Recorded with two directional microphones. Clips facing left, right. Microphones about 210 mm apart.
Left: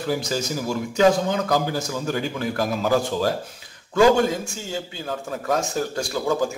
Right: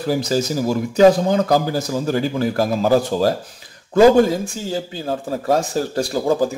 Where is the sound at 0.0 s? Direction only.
35° right (ahead or behind).